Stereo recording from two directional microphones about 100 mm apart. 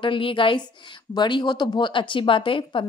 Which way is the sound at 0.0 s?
55° left (ahead or behind).